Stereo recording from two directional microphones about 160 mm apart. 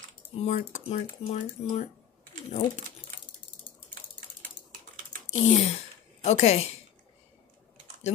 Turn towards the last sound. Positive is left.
turn(degrees=40)  # may be behind; listen again after turning